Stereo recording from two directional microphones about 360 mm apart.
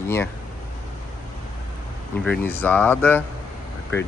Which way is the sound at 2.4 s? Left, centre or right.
Centre.